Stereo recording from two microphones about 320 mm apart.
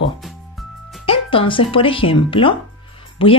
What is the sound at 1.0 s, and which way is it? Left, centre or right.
A woman's voice, centre.